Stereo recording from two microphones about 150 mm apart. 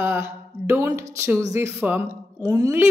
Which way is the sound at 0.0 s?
15° right (ahead or behind).